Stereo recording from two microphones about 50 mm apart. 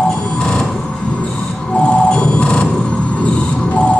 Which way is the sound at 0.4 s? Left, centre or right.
Centre.